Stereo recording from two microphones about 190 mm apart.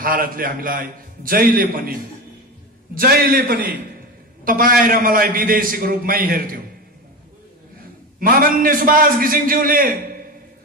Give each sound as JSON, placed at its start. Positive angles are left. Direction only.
{"t": 0.0, "sound": "a man's voice", "side_deg": -50}
{"t": 8.2, "sound": "a man's voice", "side_deg": -50}